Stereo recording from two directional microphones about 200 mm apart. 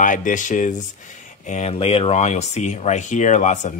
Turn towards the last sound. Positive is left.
turn(degrees=35)  # may be behind; listen again after turning